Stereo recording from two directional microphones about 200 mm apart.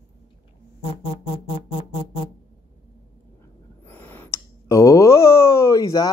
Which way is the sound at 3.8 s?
10° left (ahead or behind).